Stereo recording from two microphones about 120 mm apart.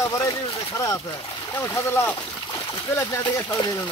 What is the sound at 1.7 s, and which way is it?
Speech, 20° left (ahead or behind).